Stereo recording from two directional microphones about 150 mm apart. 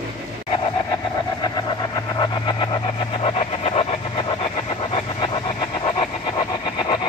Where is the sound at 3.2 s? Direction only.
40° left (ahead or behind).